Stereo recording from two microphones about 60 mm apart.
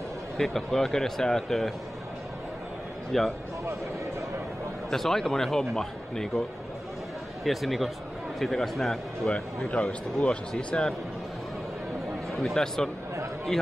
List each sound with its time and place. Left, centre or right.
0.4 s a man's voice: centre
3.1 s speech: centre
4.9 s a man's voice: centre
7.4 s speech: centre
9.3 s a man's voice: centre
12.4 s a man's voice: centre